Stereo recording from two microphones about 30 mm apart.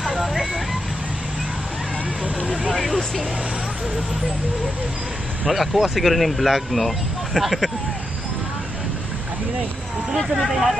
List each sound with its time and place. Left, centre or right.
0.0 s vehicle: centre
2.7 s vehicle: centre
5.5 s speech: centre
10.1 s speech: centre